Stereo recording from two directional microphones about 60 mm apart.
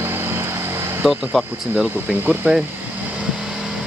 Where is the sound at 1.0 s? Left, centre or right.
Centre.